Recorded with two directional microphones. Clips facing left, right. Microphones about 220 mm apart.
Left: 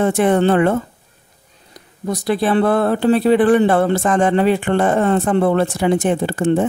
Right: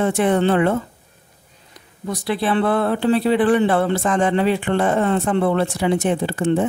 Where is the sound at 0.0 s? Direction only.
45° left (ahead or behind).